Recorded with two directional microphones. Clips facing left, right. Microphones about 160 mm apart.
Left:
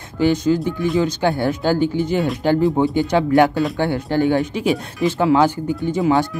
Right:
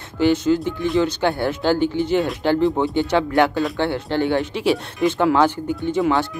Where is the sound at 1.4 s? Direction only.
45° left (ahead or behind).